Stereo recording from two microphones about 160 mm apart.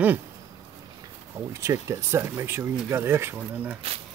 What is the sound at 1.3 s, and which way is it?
Speech, 20° right (ahead or behind).